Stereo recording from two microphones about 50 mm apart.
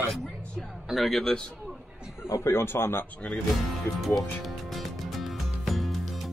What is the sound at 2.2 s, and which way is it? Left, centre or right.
Speech, left.